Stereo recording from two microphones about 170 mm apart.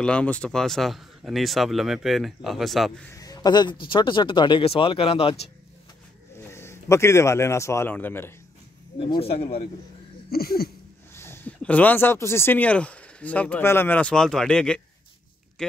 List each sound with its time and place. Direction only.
0.0 s a man's voice: 5° left (ahead or behind)
3.1 s speech: 20° left (ahead or behind)
6.3 s a man's voice: 15° left (ahead or behind)
9.0 s speech: 35° left (ahead or behind)
10.3 s a sound: 65° left (ahead or behind)
11.1 s speech: 15° left (ahead or behind)